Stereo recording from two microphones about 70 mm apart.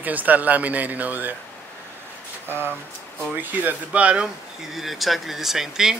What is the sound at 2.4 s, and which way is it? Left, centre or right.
Speech, right.